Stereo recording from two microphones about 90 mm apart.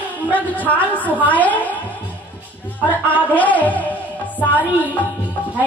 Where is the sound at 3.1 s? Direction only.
15° left (ahead or behind).